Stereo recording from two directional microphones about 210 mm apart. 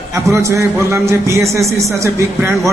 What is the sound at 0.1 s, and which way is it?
A man's voice, 15° right (ahead or behind).